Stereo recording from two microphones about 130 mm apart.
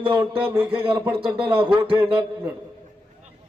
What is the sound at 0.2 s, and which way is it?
Speech, 15° right (ahead or behind).